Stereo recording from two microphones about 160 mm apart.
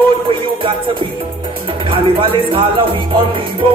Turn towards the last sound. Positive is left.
turn(degrees=-35)  # may be behind; listen again after turning